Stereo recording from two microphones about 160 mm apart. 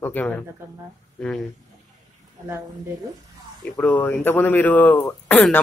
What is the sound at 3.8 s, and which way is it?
Speech, 10° left (ahead or behind).